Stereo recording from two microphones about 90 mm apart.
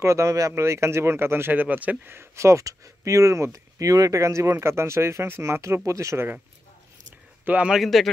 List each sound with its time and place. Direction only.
0.0 s speech: 35° right (ahead or behind)
7.4 s a man's voice: 15° right (ahead or behind)
7.7 s speech: centre (ahead or behind)